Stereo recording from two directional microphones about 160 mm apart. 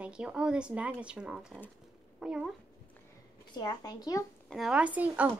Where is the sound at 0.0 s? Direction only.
5° right (ahead or behind).